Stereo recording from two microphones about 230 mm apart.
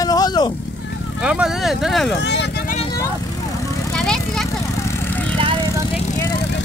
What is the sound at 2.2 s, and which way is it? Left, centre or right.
Vehicle, left.